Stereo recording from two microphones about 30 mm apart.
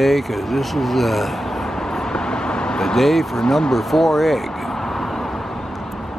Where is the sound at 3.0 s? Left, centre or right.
Centre.